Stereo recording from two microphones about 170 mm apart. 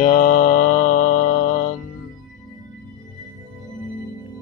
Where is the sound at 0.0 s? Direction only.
45° left (ahead or behind).